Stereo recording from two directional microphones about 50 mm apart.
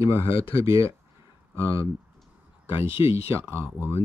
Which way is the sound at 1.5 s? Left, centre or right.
Right.